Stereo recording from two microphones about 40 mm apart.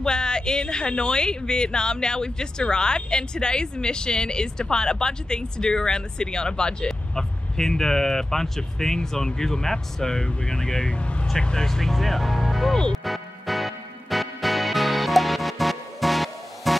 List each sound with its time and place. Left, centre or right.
0.0 s a woman's voice: centre
11.0 s speech: left
11.3 s a woman's voice: left
11.6 s speech: centre
12.9 s music: centre